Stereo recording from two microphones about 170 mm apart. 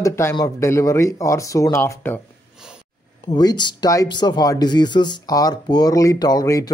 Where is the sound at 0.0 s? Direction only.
15° left (ahead or behind).